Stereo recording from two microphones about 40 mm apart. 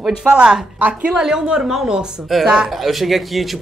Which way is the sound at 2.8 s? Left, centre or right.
Centre.